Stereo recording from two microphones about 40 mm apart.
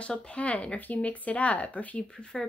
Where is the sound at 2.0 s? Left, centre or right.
Left.